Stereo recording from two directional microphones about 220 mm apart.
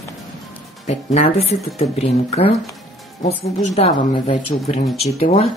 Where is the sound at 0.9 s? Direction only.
30° left (ahead or behind).